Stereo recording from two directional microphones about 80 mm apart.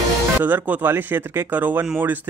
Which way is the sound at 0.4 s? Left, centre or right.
Right.